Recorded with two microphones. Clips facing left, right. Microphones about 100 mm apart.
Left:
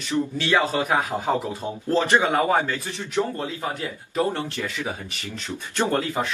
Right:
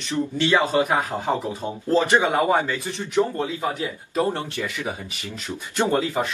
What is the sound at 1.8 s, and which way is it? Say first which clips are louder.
Speech: right 1 dB; 15° right (ahead or behind).